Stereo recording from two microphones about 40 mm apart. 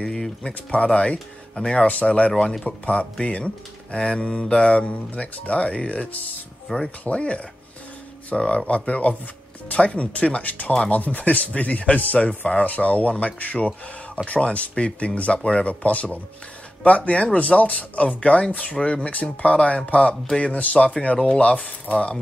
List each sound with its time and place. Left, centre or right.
0.0 s speech: centre
0.9 s speech: left
1.5 s speech: centre
1.9 s speech: left